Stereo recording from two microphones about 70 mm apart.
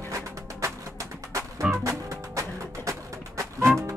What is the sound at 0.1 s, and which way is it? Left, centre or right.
Music, right.